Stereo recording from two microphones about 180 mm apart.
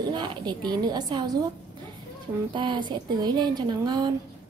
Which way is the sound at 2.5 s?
25° right (ahead or behind).